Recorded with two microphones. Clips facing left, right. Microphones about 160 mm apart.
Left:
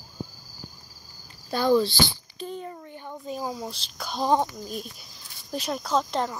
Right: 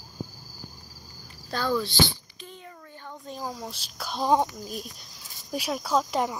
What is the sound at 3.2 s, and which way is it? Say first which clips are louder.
Speech: left 3 dB; 5° left (ahead or behind).